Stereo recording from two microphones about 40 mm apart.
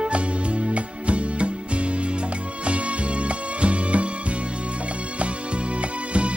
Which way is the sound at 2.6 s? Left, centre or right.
Right.